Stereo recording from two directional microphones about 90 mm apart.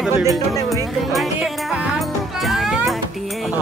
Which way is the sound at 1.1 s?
Centre (ahead or behind).